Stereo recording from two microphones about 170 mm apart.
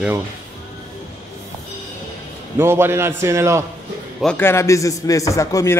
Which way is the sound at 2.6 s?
15° right (ahead or behind).